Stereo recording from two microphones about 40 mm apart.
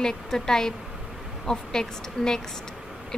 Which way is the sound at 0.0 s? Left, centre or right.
Centre.